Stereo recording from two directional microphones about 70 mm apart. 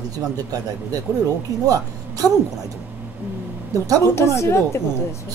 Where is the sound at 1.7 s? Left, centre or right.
Right.